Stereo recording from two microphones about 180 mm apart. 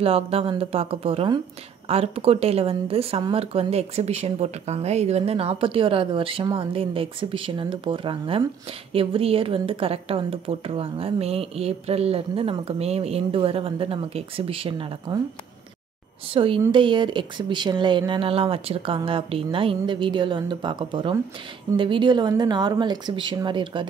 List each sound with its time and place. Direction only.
0.0 s speech: 30° right (ahead or behind)
16.3 s speech: 30° right (ahead or behind)